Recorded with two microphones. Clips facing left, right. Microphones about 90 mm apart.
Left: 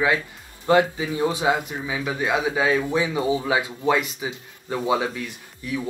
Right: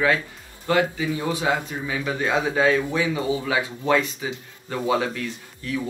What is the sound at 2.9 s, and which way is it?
Speech, 20° left (ahead or behind).